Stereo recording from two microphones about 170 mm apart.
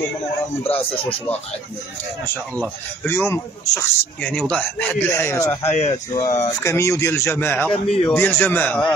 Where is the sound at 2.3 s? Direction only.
10° left (ahead or behind).